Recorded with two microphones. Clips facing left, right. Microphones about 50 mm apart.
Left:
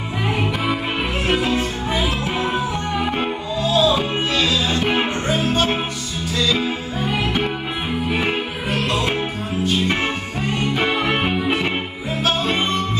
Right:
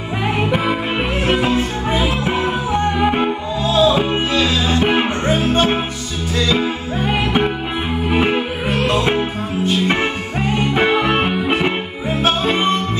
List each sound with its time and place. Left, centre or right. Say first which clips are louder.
0.4 s music: right 5 dB; right
7.2 s music: right 4 dB; right
8.6 s music: right 4 dB; right
10.9 s music: right 4 dB; right